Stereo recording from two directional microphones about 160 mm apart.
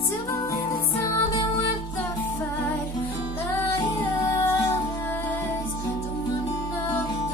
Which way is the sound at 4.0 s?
15° left (ahead or behind).